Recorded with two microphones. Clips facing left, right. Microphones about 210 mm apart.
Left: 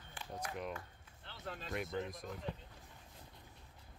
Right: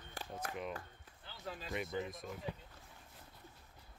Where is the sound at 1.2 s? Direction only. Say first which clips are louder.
Even; 5° right (ahead or behind).